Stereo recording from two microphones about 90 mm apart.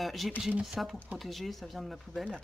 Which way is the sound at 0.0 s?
Centre (ahead or behind).